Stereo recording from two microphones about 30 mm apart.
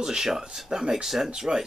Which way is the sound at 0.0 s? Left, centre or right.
Centre.